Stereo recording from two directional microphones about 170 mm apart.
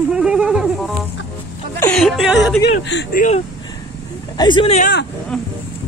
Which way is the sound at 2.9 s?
85° left.